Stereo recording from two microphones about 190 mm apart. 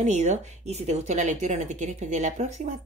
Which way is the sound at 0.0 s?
35° right (ahead or behind).